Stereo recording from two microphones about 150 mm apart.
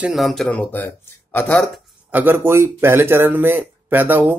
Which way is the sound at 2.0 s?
10° right (ahead or behind).